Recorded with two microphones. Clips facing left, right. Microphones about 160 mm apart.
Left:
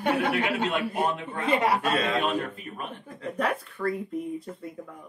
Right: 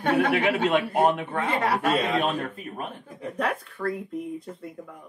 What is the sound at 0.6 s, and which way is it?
Speech, 60° right (ahead or behind).